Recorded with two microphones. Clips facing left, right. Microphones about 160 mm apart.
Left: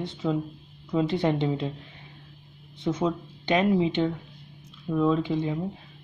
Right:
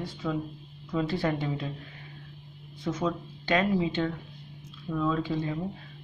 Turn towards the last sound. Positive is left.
turn(degrees=20)  # may be behind; listen again after turning